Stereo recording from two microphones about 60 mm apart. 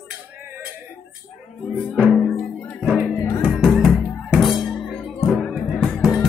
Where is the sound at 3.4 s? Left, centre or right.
Centre.